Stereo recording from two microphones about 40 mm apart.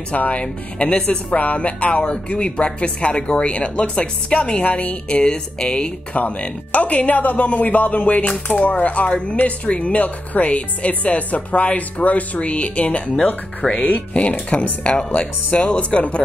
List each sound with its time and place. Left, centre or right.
0.1 s speech: left
5.2 s speech: left
6.4 s speech: left
13.0 s speech: left
13.7 s speech: left
14.5 s speech: left